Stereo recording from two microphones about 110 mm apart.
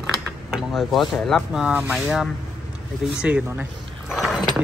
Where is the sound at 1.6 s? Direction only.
15° right (ahead or behind).